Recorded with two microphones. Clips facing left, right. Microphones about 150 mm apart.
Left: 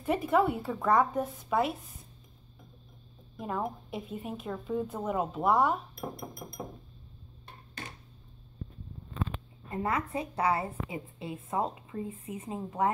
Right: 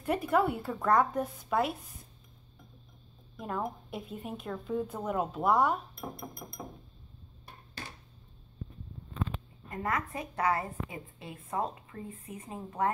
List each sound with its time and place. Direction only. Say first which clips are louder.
0.0 s a woman's voice: left 1 dB; centre (ahead or behind)
3.3 s a woman's voice: left 1 dB; centre (ahead or behind)
9.7 s a woman's voice: left 2 dB; 25° left (ahead or behind)